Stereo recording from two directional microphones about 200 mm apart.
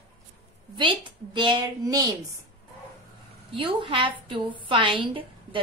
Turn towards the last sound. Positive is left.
turn(degrees=-25)  # may be behind; listen again after turning